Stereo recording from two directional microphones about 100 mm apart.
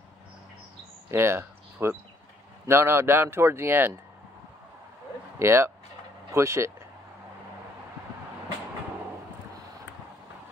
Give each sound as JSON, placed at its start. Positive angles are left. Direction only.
{"t": 1.1, "sound": "speech", "side_deg": -25}
{"t": 5.4, "sound": "speech", "side_deg": -25}